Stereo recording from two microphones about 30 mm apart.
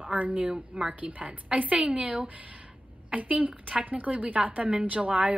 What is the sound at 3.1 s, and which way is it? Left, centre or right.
A woman's voice, right.